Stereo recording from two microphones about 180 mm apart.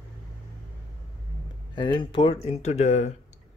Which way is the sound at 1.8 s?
25° left (ahead or behind).